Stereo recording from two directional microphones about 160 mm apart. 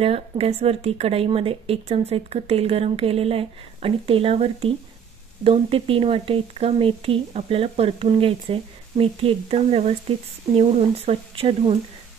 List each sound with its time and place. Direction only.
0.0 s a woman's voice: 40° right (ahead or behind)